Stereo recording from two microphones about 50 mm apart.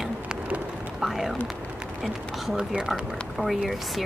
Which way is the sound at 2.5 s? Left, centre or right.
Centre.